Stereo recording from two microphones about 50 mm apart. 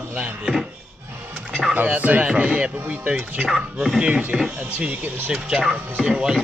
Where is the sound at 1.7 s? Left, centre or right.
Right.